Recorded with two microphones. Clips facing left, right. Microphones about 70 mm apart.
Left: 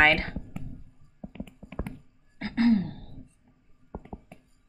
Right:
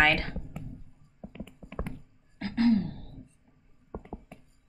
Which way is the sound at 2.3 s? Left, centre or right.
Left.